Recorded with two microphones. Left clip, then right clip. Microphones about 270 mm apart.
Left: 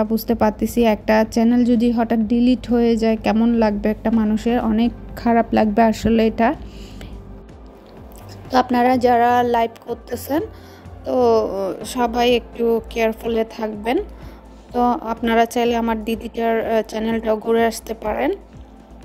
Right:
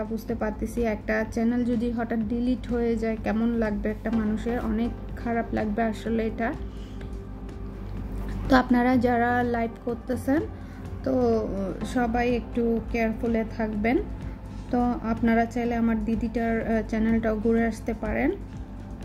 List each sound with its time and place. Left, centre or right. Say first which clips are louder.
0.0 s a woman's voice: left 11 dB; left
8.5 s a woman's voice: left 7 dB; left